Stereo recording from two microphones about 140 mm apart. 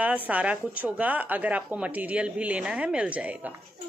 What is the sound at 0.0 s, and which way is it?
A woman's voice, 10° right (ahead or behind).